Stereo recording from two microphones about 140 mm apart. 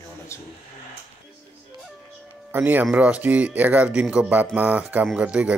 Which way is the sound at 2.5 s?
15° right (ahead or behind).